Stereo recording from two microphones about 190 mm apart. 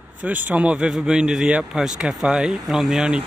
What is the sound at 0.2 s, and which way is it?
Speech, 10° right (ahead or behind).